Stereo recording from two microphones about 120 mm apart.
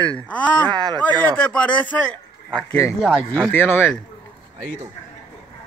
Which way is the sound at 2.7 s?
25° left (ahead or behind).